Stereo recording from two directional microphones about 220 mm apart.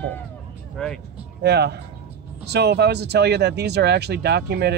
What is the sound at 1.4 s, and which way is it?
Speech, 50° right (ahead or behind).